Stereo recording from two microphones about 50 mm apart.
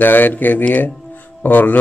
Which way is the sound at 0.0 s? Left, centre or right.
Left.